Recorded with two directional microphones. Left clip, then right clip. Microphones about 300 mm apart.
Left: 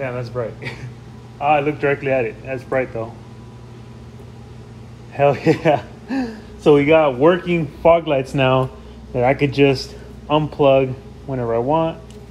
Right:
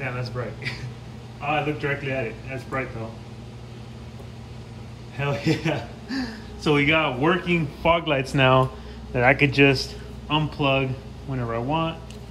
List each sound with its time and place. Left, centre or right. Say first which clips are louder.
0.0 s speech: left 6 dB; centre
1.9 s a man's voice: left 9 dB; left
5.1 s a man's voice: left 10 dB; left
5.8 s speech: left 5 dB; centre